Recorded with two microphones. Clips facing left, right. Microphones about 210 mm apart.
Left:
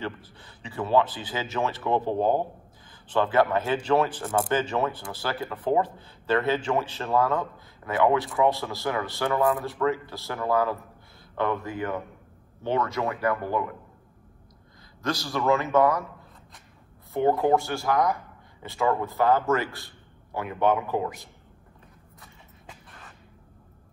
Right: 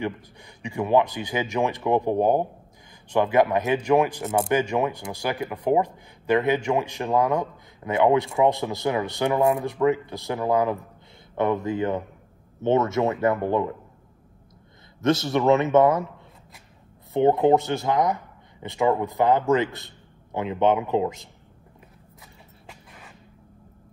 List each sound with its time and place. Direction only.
0.0 s speech: 15° right (ahead or behind)
4.2 s a man's voice: 25° right (ahead or behind)
4.5 s a man's voice: 10° right (ahead or behind)
15.0 s a man's voice: 25° right (ahead or behind)
17.1 s a man's voice: 20° right (ahead or behind)
22.2 s a sound: 10° right (ahead or behind)